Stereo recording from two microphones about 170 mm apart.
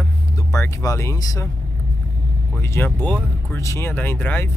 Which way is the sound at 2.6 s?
15° left (ahead or behind).